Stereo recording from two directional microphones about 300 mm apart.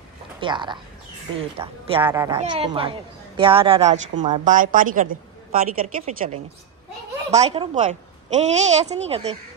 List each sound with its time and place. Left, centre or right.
0.4 s a woman's voice: centre